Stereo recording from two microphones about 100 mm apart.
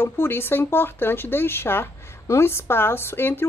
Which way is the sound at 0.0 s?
25° left (ahead or behind).